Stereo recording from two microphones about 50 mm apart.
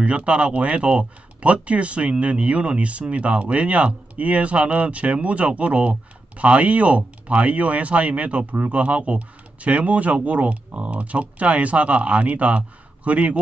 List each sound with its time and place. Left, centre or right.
0.0 s speech: right